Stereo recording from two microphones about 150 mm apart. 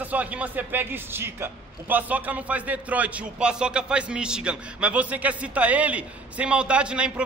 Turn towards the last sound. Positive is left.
turn(degrees=-5)  # may be behind; listen again after turning